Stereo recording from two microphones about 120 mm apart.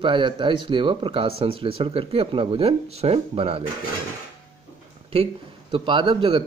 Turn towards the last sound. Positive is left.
turn(degrees=-45)  # may be behind; listen again after turning